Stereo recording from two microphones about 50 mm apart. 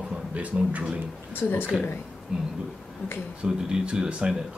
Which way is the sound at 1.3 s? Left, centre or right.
Left.